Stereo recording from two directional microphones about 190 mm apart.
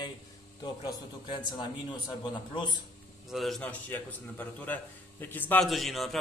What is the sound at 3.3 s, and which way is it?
A man's voice, centre (ahead or behind).